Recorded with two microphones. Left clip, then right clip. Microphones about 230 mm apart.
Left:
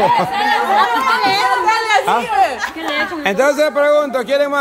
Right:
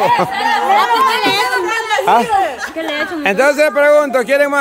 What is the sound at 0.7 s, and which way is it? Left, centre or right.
Chatter, right.